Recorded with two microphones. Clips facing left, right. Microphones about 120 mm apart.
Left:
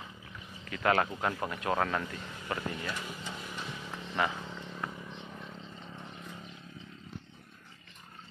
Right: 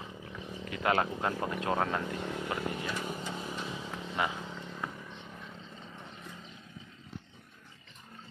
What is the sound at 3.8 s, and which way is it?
Vehicle, 10° right (ahead or behind).